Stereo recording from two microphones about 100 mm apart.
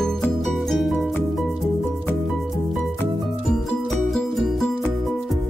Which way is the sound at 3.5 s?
5° left (ahead or behind).